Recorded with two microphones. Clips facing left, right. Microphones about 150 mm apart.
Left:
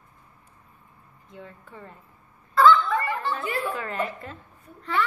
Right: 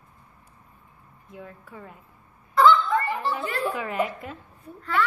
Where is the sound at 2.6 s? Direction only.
15° right (ahead or behind).